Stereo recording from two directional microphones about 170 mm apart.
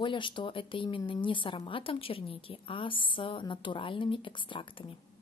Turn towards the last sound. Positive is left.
turn(degrees=30)  # may be behind; listen again after turning